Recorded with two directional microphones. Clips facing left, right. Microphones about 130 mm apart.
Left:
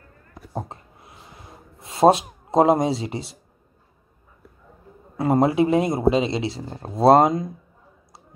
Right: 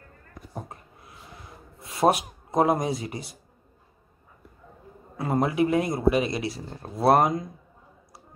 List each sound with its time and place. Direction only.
0.5 s a sound: 25° left (ahead or behind)
1.8 s speech: 25° left (ahead or behind)
5.1 s speech: 25° left (ahead or behind)